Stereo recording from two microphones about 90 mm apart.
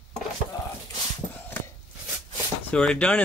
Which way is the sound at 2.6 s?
15° left (ahead or behind).